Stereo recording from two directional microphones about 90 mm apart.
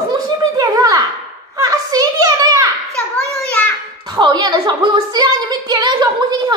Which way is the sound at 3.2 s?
15° left (ahead or behind).